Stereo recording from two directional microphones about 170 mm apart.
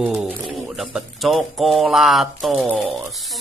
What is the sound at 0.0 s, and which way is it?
Speech, centre (ahead or behind).